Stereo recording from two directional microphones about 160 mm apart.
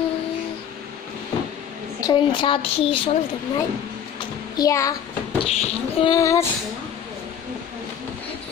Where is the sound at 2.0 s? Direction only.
30° left (ahead or behind).